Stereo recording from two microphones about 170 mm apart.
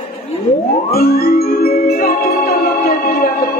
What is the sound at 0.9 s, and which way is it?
Music, 60° left (ahead or behind).